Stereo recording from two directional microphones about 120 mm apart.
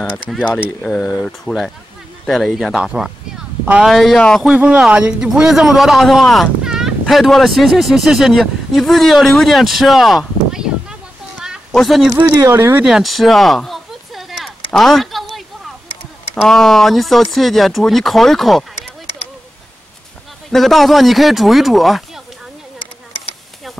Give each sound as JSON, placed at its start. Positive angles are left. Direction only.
{"t": 0.6, "sound": "speech", "side_deg": 0}
{"t": 3.9, "sound": "a man's voice", "side_deg": 0}
{"t": 12.2, "sound": "speech", "side_deg": -20}
{"t": 12.8, "sound": "a sound", "side_deg": -5}
{"t": 16.4, "sound": "speech", "side_deg": 5}
{"t": 20.5, "sound": "speech", "side_deg": 0}